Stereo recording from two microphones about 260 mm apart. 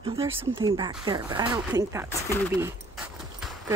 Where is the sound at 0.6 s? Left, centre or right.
Centre.